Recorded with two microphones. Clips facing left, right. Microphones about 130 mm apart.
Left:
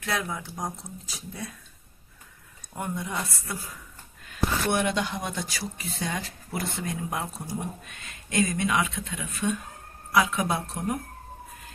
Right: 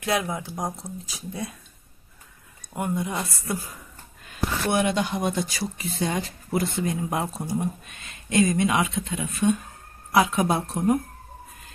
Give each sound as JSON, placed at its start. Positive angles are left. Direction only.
{"t": 0.0, "sound": "speech", "side_deg": -15}
{"t": 2.7, "sound": "speech", "side_deg": -10}
{"t": 4.6, "sound": "speech", "side_deg": -10}